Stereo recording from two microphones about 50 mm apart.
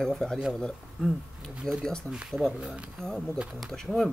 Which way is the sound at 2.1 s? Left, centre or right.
Centre.